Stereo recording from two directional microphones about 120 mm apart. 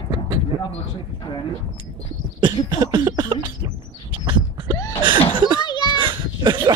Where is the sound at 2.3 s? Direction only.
40° right (ahead or behind).